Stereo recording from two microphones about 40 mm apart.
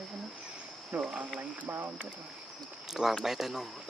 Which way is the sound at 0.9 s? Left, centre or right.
Right.